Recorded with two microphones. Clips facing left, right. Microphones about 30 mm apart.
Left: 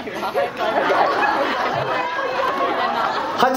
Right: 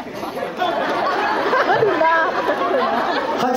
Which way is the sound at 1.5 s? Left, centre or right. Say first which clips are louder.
Right 5 dB; right.